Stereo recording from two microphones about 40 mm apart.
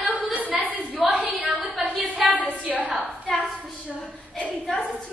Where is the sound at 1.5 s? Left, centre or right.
Centre.